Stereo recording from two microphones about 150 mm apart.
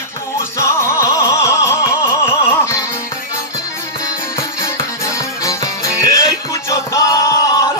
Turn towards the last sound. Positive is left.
turn(degrees=20)  # may be behind; listen again after turning